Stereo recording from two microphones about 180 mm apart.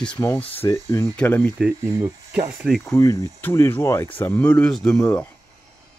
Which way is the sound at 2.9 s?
15° left (ahead or behind).